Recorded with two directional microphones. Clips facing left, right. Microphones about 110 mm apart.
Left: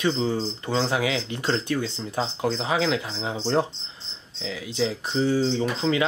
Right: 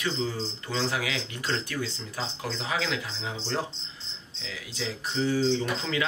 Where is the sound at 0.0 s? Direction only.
25° left (ahead or behind).